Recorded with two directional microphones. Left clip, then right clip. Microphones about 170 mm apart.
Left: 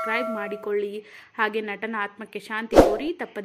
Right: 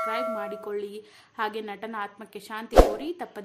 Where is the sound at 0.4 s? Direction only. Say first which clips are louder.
Left 5 dB; 20° left (ahead or behind).